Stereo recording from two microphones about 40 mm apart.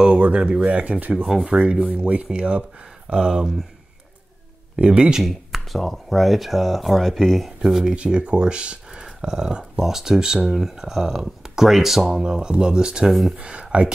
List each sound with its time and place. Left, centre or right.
0.2 s speech: right
1.2 s speech: centre
1.5 s speech: right
3.2 s speech: centre
4.7 s speech: right
5.2 s speech: centre
7.4 s speech: centre
7.9 s speech: right
10.4 s speech: centre
10.7 s speech: centre
12.2 s speech: right